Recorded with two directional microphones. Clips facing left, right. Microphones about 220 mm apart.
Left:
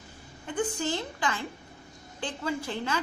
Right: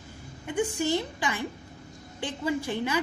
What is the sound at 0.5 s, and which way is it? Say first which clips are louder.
A woman's voice: right 3 dB; 15° right (ahead or behind).